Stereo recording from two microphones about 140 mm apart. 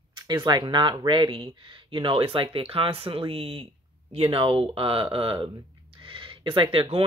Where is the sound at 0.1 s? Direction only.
30° right (ahead or behind).